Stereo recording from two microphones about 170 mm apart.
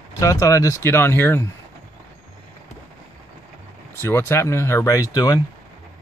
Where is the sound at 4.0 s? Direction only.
15° left (ahead or behind).